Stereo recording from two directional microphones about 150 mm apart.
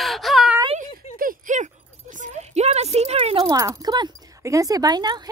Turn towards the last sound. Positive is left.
turn(degrees=-30)  # may be behind; listen again after turning